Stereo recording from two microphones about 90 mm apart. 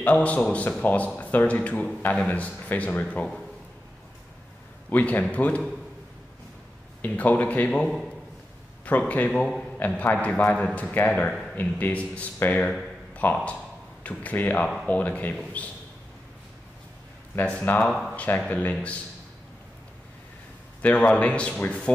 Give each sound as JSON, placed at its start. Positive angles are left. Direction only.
{"t": 0.0, "sound": "a man's voice", "side_deg": 15}
{"t": 4.8, "sound": "a man's voice", "side_deg": 15}
{"t": 7.0, "sound": "a man's voice", "side_deg": 20}
{"t": 13.1, "sound": "a sound", "side_deg": 15}
{"t": 14.0, "sound": "a man's voice", "side_deg": 20}
{"t": 17.4, "sound": "a man's voice", "side_deg": 15}
{"t": 20.8, "sound": "a man's voice", "side_deg": 15}